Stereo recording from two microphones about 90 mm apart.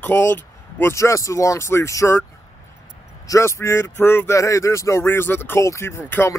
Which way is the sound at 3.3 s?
30° left (ahead or behind).